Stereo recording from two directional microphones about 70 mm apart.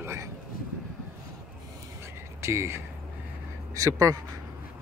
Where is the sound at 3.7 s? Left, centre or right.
Right.